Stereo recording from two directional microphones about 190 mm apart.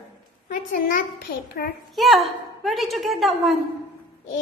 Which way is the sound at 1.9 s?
Centre (ahead or behind).